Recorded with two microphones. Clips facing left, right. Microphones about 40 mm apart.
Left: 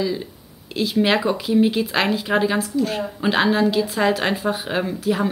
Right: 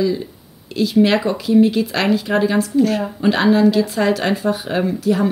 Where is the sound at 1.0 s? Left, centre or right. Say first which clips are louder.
Right 3 dB; centre.